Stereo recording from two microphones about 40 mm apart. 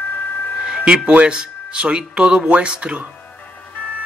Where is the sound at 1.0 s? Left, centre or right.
Right.